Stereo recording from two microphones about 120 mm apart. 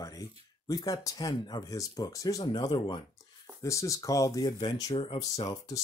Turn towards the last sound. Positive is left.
turn(degrees=30)  # may be behind; listen again after turning